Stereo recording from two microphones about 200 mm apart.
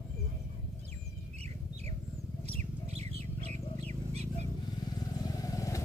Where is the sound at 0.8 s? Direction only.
30° right (ahead or behind).